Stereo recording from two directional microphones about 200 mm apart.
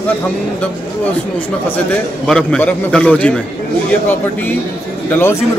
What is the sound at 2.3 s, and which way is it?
A man's voice, 5° left (ahead or behind).